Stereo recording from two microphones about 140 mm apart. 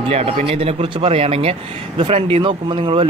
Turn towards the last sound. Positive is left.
turn(degrees=-35)  # may be behind; listen again after turning